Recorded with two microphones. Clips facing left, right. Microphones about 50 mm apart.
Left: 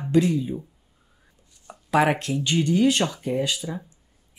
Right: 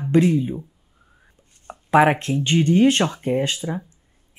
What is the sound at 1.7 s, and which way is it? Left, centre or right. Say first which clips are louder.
Speech: right 5 dB; right.